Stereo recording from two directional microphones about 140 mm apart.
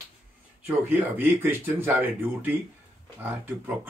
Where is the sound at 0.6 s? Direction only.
15° right (ahead or behind).